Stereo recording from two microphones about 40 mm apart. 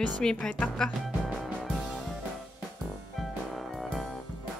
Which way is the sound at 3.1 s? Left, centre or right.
Centre.